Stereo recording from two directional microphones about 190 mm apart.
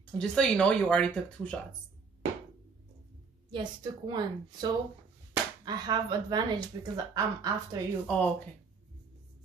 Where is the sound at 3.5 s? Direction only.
25° right (ahead or behind).